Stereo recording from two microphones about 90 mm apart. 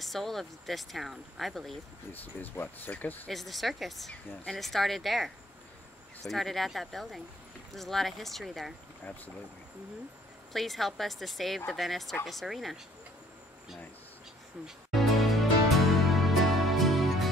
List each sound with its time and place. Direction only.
0.0 s speech: centre (ahead or behind)
2.4 s speech: 20° left (ahead or behind)
3.3 s speech: centre (ahead or behind)
9.0 s speech: 20° left (ahead or behind)
10.5 s speech: centre (ahead or behind)
14.9 s music: centre (ahead or behind)